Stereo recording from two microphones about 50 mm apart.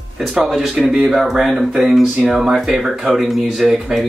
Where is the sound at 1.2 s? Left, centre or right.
Centre.